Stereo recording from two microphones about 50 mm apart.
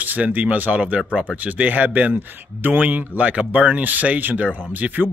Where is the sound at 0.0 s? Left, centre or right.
Right.